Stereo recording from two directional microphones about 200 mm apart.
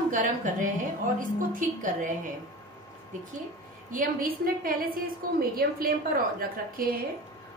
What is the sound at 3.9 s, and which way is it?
A woman's voice, 45° right (ahead or behind).